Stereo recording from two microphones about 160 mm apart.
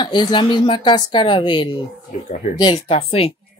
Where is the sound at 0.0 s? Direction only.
30° left (ahead or behind).